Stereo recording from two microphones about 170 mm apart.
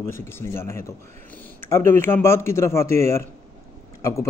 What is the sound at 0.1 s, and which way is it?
Speech, 15° left (ahead or behind).